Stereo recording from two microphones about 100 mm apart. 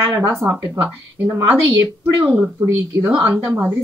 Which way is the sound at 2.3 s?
20° right (ahead or behind).